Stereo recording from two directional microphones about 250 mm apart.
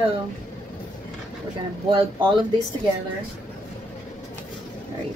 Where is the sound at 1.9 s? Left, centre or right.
Right.